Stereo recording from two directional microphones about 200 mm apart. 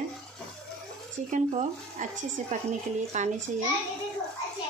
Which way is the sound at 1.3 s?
40° right (ahead or behind).